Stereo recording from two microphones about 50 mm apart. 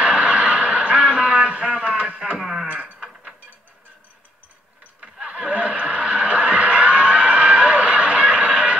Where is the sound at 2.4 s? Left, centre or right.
Centre.